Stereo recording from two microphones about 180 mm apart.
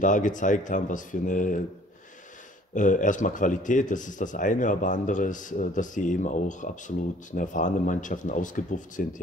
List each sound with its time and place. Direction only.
0.0 s a man's voice: 45° left (ahead or behind)
2.7 s a man's voice: 45° left (ahead or behind)